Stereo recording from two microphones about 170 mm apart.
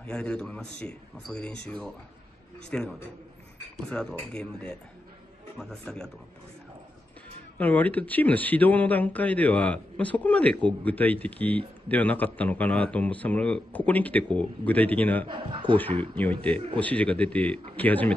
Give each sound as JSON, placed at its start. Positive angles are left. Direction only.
{"t": 0.0, "sound": "a man's voice", "side_deg": 5}
{"t": 4.2, "sound": "speech", "side_deg": 5}
{"t": 7.5, "sound": "a man's voice", "side_deg": 10}
{"t": 15.2, "sound": "a man's voice", "side_deg": -25}
{"t": 16.0, "sound": "a man's voice", "side_deg": 10}